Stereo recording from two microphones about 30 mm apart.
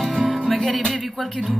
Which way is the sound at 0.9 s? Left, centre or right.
Centre.